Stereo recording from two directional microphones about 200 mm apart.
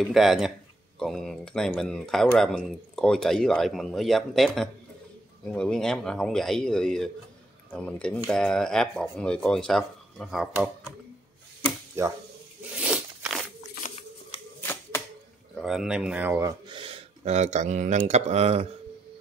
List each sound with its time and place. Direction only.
0.0 s speech: centre (ahead or behind)
12.0 s speech: 15° right (ahead or behind)
12.7 s zipper: 5° right (ahead or behind)
15.6 s speech: 5° right (ahead or behind); by 18.7 s 30° right (ahead or behind)